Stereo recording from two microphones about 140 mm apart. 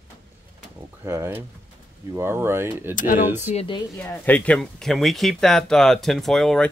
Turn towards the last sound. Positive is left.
turn(degrees=5)  # may be behind; listen again after turning